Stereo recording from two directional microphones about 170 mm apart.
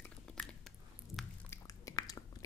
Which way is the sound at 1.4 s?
20° left (ahead or behind).